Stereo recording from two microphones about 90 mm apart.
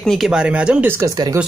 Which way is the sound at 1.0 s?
50° right (ahead or behind).